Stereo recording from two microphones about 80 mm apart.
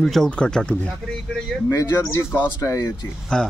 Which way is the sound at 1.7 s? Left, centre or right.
Left.